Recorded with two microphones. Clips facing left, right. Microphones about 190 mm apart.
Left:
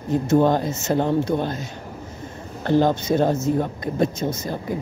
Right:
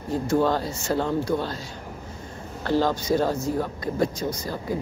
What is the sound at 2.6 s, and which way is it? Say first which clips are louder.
Speech: left 4 dB; 20° left (ahead or behind).